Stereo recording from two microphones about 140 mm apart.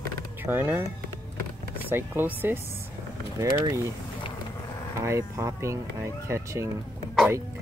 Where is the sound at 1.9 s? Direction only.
15° right (ahead or behind).